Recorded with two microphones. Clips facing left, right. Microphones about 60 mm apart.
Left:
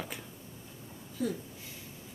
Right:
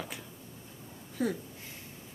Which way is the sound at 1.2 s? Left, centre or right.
Right.